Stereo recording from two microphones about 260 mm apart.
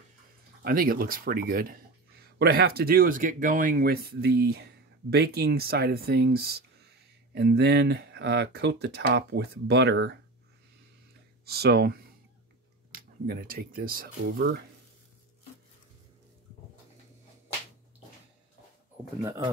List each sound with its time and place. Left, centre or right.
0.6 s speech: right
11.4 s speech: right